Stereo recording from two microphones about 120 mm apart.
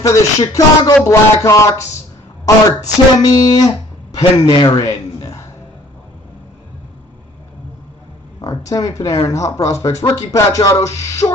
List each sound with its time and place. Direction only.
0.0 s speech: 30° left (ahead or behind)
4.6 s music: 30° left (ahead or behind)
8.4 s speech: 30° left (ahead or behind)